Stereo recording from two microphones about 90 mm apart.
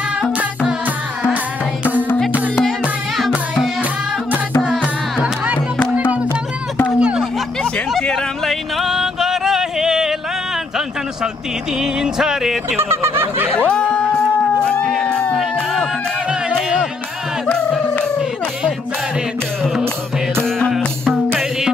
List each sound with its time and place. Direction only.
7.0 s a sound: 10° right (ahead or behind)
7.9 s music: centre (ahead or behind)
11.8 s music: 5° right (ahead or behind)
12.7 s fowl: 30° right (ahead or behind)
13.5 s music: 10° left (ahead or behind)
17.5 s music: 10° left (ahead or behind)
20.4 s music: 5° left (ahead or behind)